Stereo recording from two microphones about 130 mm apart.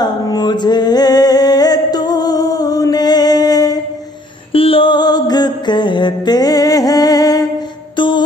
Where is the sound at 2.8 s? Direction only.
30° left (ahead or behind).